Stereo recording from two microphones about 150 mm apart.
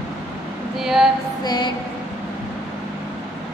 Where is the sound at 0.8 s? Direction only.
Centre (ahead or behind).